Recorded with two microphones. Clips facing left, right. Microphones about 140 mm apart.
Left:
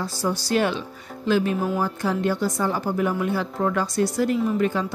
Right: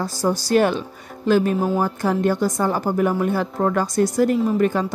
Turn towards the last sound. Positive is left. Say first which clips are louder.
# right 3 dB
turn(degrees=-50)  # may be behind; listen again after turning